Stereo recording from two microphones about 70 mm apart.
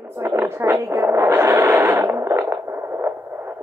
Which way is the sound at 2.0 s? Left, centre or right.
Right.